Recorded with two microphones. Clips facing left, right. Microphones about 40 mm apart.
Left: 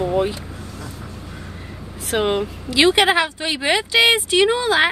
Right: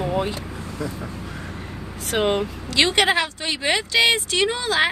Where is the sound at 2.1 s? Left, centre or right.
Centre.